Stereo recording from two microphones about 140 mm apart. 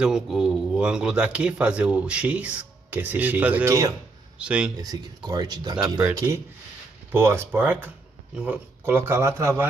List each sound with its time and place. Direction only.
0.0 s speech: 5° right (ahead or behind)
4.7 s speech: 30° right (ahead or behind)